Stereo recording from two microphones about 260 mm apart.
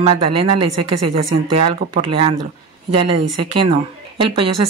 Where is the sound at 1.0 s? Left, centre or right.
Right.